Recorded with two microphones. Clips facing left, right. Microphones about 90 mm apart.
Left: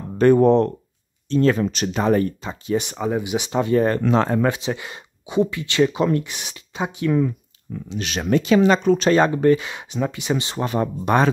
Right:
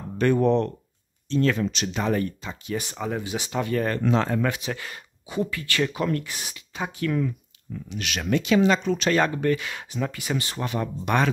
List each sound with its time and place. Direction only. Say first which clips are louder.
0.2 s speech: left 7 dB; 40° left (ahead or behind)
2.8 s speech: left 6 dB; 15° left (ahead or behind)
4.1 s speech: left 5 dB; 35° left (ahead or behind)